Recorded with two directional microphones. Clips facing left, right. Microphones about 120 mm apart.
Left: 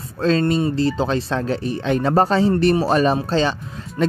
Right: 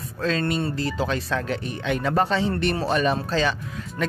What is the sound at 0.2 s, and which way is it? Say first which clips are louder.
Speech: left 7 dB; 35° left (ahead or behind).